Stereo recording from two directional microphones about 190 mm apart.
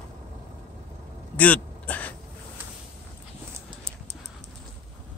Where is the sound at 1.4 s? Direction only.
5° left (ahead or behind).